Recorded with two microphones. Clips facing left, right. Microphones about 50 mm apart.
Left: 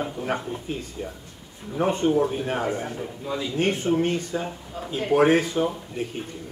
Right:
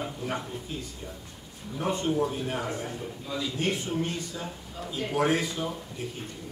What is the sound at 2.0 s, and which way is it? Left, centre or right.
Speech, centre.